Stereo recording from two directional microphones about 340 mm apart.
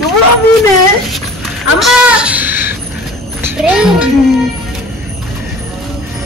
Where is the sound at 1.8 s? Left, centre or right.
Centre.